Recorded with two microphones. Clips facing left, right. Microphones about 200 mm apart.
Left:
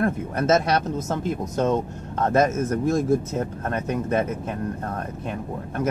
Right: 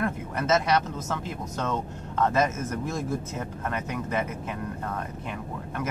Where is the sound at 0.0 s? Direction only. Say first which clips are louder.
Left 6 dB; 45° left (ahead or behind).